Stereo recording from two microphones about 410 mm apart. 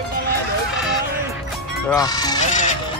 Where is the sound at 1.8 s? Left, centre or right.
Centre.